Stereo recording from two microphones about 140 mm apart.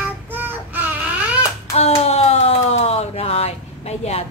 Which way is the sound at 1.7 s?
50° left (ahead or behind).